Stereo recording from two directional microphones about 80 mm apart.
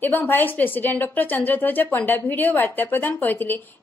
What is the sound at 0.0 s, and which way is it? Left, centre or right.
A woman's voice, left.